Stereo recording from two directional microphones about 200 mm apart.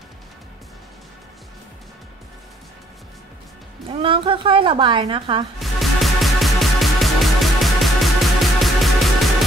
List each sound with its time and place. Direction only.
3.9 s a woman's voice: 25° right (ahead or behind)
5.6 s music: centre (ahead or behind)